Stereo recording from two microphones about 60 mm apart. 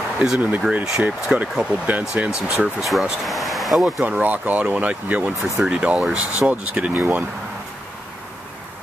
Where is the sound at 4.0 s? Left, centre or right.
Right.